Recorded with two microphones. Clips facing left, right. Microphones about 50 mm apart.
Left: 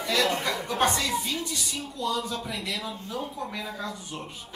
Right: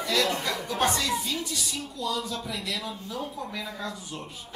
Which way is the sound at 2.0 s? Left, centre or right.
Left.